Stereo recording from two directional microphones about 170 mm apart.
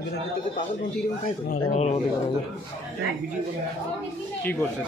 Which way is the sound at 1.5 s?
40° left (ahead or behind).